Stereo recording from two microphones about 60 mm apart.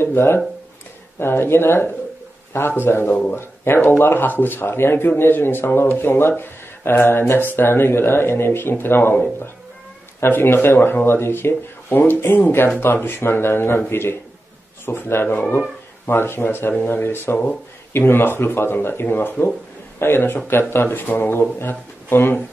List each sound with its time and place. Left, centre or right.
0.0 s speech: left
10.2 s speech: left